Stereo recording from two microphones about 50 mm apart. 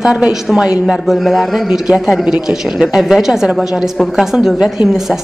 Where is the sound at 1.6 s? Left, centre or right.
Centre.